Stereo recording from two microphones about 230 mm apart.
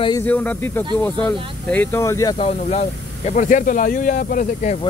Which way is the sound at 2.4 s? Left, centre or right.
Left.